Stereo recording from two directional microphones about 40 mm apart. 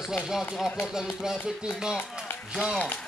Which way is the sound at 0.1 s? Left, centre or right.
Centre.